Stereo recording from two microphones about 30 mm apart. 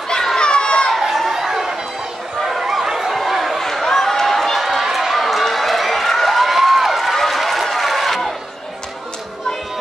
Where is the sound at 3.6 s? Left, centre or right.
Centre.